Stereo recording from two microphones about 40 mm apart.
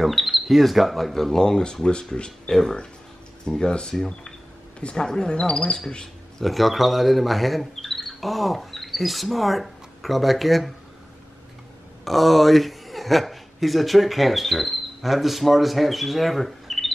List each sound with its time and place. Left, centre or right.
0.0 s speech: centre; by 5.0 s left
5.0 s speech: centre
5.3 s speech: left
6.4 s speech: centre
12.0 s a man's voice: centre